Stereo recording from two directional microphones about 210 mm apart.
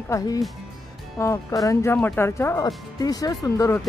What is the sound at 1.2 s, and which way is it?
Speech, 15° left (ahead or behind).